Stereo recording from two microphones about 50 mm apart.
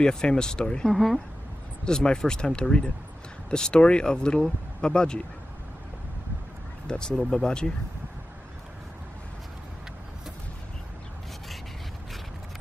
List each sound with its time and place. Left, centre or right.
0.0 s speech: centre
0.9 s speech: centre
1.9 s speech: centre
6.9 s speech: centre